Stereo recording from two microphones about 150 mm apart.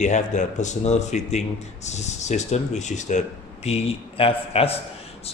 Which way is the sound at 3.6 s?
40° left (ahead or behind).